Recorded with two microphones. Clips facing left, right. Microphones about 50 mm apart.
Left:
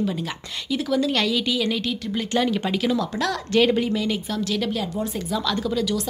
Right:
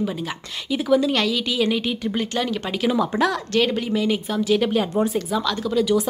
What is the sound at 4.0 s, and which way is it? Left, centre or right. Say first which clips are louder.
Speech: right 3 dB; centre.